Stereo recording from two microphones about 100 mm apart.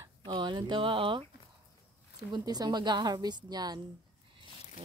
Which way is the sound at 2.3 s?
45° right (ahead or behind).